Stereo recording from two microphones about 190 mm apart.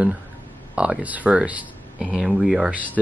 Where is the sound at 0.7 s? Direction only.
5° right (ahead or behind).